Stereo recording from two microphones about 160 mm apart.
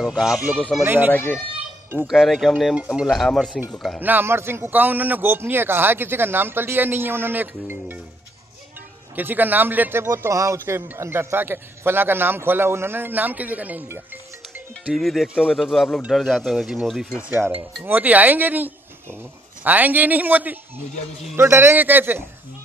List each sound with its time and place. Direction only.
0.2 s a man's voice: 5° right (ahead or behind)
2.0 s speech: centre (ahead or behind)
4.0 s a man's voice: 10° right (ahead or behind)
9.1 s a man's voice: 10° right (ahead or behind)
14.9 s a man's voice: centre (ahead or behind)